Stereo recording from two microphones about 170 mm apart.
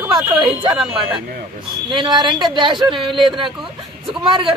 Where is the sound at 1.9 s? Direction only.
25° right (ahead or behind).